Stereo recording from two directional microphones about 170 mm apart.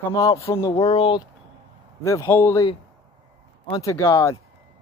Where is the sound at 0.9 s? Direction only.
30° left (ahead or behind).